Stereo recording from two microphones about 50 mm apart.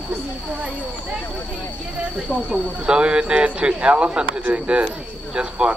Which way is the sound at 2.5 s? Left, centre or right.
Centre.